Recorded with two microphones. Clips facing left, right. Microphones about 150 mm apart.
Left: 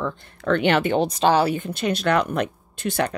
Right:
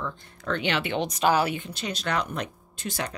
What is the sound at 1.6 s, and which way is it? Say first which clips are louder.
Speech: left 9 dB; 55° left (ahead or behind).